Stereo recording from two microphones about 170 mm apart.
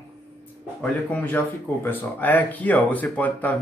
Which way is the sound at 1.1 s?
10° left (ahead or behind).